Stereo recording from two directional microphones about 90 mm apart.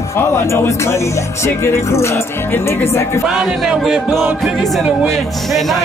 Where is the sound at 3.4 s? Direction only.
5° right (ahead or behind).